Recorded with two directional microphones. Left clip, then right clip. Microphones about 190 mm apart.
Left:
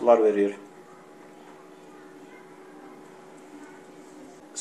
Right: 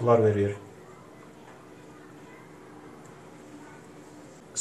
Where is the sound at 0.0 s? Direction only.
40° left (ahead or behind).